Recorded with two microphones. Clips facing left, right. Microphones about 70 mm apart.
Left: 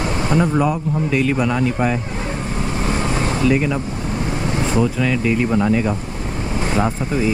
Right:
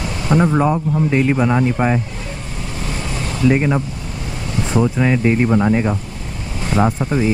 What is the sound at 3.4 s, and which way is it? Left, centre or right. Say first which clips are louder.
Speech: right 5 dB; right.